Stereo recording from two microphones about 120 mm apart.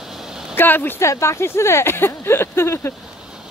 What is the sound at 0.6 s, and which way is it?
Speech, 15° left (ahead or behind).